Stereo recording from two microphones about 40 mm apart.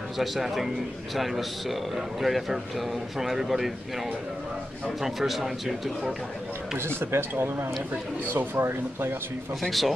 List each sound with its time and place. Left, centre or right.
0.2 s speech: centre
5.0 s speech: centre
6.8 s speech: right
9.6 s speech: centre